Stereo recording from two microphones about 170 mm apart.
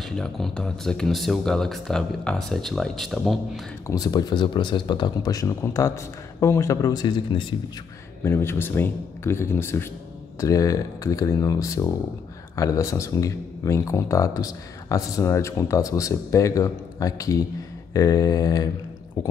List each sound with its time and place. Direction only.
0.1 s speech: 5° left (ahead or behind)
3.8 s speech: 20° left (ahead or behind)